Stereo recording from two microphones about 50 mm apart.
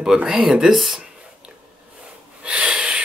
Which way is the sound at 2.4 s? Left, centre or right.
Centre.